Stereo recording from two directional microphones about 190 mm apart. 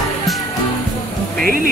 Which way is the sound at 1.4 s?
50° right (ahead or behind).